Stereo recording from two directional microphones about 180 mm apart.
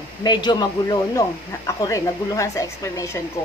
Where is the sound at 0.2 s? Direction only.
25° left (ahead or behind).